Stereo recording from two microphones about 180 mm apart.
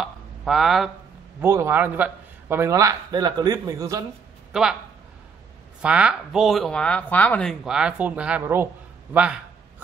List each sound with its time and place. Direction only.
0.0 s a sound: centre (ahead or behind)
1.4 s a man's voice: 15° right (ahead or behind)
4.5 s speech: 5° right (ahead or behind)
5.8 s speech: 5° right (ahead or behind)